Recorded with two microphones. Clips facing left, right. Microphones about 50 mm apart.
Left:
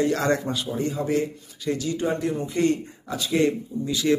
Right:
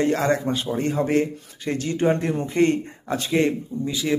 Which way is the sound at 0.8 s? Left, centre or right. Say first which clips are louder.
Right 3 dB; right.